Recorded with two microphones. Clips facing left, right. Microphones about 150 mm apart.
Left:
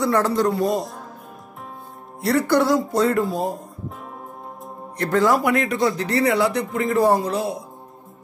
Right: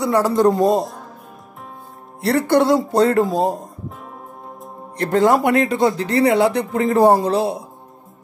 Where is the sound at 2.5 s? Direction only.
25° right (ahead or behind).